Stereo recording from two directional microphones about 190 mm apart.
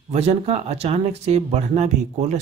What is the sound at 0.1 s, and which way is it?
Speech, 35° right (ahead or behind).